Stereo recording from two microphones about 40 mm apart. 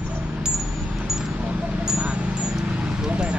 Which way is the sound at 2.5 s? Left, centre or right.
Centre.